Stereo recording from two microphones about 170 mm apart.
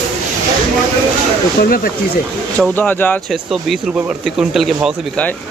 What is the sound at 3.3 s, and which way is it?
Speech, centre (ahead or behind).